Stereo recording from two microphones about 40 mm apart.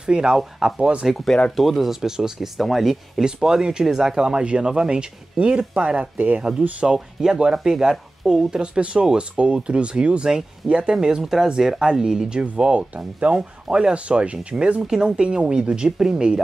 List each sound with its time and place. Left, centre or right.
0.0 s speech: centre
1.6 s speech: centre
3.3 s speech: centre
5.9 s speech: right
6.8 s speech: centre
12.4 s speech: right